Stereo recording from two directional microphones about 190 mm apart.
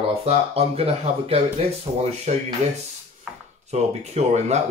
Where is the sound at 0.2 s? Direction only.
30° right (ahead or behind).